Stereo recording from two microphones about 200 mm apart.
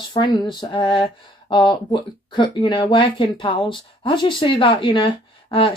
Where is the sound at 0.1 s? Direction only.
20° left (ahead or behind).